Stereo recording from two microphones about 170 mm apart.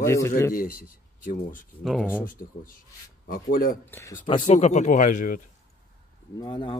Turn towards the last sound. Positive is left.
turn(degrees=30)  # may be behind; listen again after turning